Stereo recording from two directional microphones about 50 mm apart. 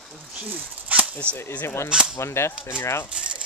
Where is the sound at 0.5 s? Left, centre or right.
Right.